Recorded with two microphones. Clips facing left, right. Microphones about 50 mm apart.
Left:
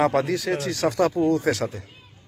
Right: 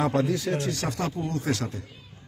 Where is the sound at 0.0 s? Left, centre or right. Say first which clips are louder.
Left 3 dB; left.